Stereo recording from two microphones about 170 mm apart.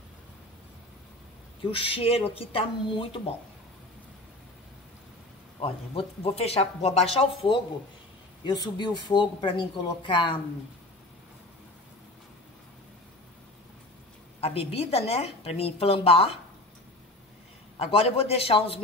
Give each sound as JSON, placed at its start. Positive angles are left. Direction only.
{"t": 1.7, "sound": "speech", "side_deg": 30}
{"t": 5.6, "sound": "speech", "side_deg": 35}
{"t": 14.4, "sound": "speech", "side_deg": 35}
{"t": 17.7, "sound": "speech", "side_deg": 35}